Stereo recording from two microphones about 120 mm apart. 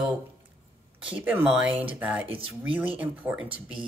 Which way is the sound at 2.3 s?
50° right (ahead or behind).